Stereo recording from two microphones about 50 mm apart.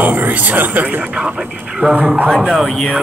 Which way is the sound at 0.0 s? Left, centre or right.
Right.